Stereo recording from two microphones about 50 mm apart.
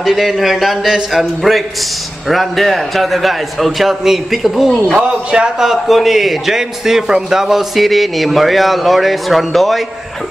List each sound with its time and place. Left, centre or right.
0.0 s a man's voice: centre
4.9 s a man's voice: centre